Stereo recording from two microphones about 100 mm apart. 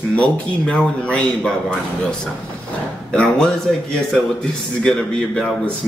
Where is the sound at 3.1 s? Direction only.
5° left (ahead or behind).